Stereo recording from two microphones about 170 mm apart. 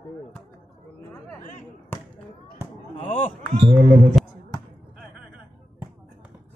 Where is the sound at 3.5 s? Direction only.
35° right (ahead or behind).